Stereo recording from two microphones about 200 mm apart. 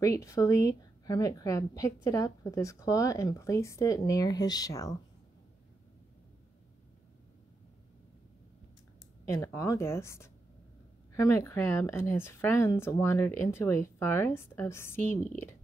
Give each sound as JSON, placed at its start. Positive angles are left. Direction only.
{"t": 0.0, "sound": "speech", "side_deg": 15}
{"t": 9.3, "sound": "speech", "side_deg": 15}